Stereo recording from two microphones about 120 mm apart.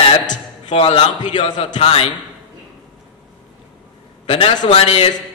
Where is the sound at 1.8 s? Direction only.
55° left (ahead or behind).